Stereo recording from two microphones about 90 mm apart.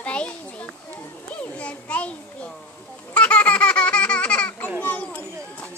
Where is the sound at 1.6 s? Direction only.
15° left (ahead or behind).